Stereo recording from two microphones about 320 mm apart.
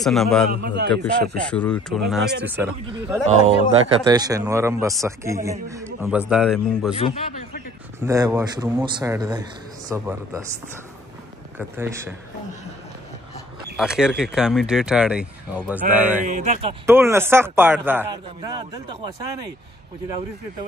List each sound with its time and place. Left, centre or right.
0.0 s speech: centre
0.5 s a man's voice: right
1.5 s a man's voice: centre
7.0 s a man's voice: centre
8.0 s a man's voice: centre
11.5 s a man's voice: centre
13.7 s speech: centre
16.3 s a man's voice: right
16.8 s a man's voice: centre